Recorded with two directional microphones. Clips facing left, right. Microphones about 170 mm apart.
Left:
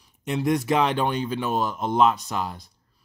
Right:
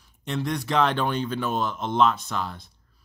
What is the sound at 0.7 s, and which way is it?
Speech, 5° left (ahead or behind).